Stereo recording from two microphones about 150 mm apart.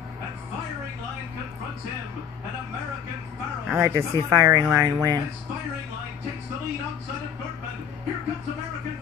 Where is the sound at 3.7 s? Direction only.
15° right (ahead or behind).